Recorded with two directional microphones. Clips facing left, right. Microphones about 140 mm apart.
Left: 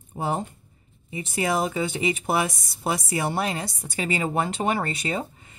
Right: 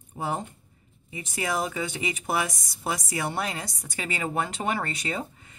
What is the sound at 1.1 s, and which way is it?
Speech, 25° left (ahead or behind).